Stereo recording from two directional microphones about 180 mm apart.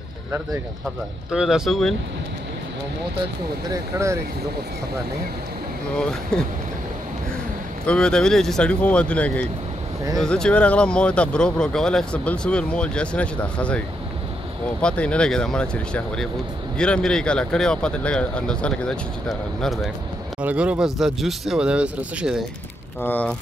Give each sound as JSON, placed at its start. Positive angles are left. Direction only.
{"t": 1.3, "sound": "speech", "side_deg": -5}
{"t": 3.7, "sound": "speech", "side_deg": -15}
{"t": 5.9, "sound": "speech", "side_deg": 5}
{"t": 7.8, "sound": "speech", "side_deg": 5}
{"t": 23.0, "sound": "speech", "side_deg": 10}